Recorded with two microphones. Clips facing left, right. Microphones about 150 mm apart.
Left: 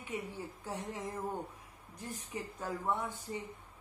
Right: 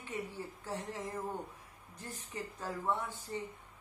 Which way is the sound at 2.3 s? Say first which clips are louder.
Left 1 dB; 15° left (ahead or behind).